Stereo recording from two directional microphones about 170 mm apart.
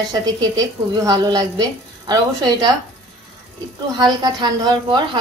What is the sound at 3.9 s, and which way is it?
Speech, 25° right (ahead or behind).